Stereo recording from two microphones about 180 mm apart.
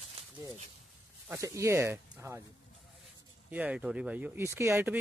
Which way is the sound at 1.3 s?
15° right (ahead or behind).